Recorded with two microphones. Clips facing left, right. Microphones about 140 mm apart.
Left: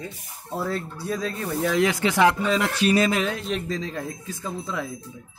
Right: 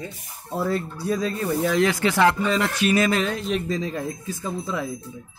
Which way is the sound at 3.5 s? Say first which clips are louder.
Right 3 dB; 5° right (ahead or behind).